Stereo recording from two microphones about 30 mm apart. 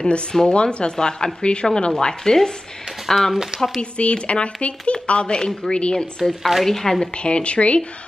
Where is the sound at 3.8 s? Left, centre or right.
Left.